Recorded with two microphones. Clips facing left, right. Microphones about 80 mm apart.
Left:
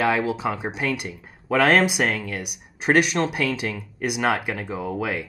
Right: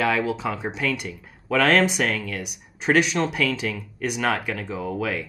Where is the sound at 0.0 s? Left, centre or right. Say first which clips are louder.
Left 1 dB; centre.